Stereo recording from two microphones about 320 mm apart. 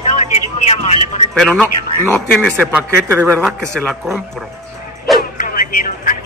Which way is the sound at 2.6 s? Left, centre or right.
Centre.